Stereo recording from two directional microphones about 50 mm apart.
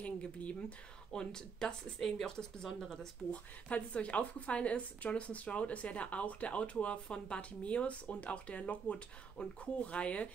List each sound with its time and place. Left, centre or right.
0.0 s speech: left; by 3.1 s centre
3.3 s a woman's voice: left